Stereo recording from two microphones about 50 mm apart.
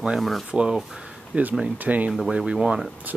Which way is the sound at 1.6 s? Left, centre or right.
Right.